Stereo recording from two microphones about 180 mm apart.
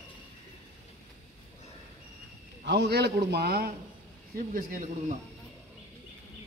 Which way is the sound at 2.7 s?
65° right (ahead or behind).